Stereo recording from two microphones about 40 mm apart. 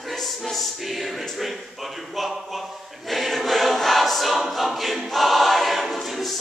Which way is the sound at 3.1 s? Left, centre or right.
Centre.